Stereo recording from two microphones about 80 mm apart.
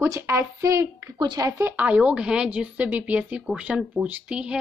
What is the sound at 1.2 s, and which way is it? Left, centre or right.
Speech, right.